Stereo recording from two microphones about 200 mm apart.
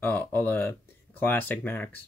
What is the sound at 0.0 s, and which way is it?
Speech, 10° left (ahead or behind).